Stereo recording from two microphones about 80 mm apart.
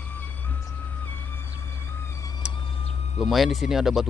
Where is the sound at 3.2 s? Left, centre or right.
Centre.